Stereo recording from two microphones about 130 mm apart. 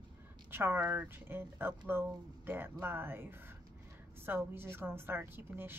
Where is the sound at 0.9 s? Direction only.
15° right (ahead or behind).